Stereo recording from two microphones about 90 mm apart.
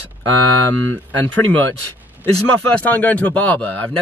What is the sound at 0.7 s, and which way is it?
Speech, 20° left (ahead or behind).